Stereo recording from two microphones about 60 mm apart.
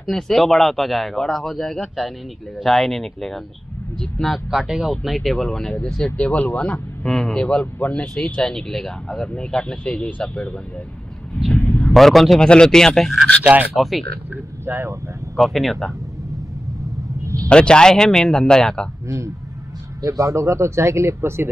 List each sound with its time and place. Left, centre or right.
0.0 s speech: centre
4.5 s speech: centre
6.0 s speech: left
7.1 s speech: centre
8.4 s speech: centre
11.9 s speech: centre
12.4 s speech: centre
13.4 s speech: right
13.7 s speech: centre
14.3 s speech: right
15.3 s speech: centre
17.2 s a sound: right
17.5 s speech: centre
19.0 s a man's voice: right